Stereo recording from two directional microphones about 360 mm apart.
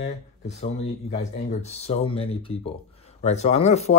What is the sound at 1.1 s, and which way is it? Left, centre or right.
Speech, centre.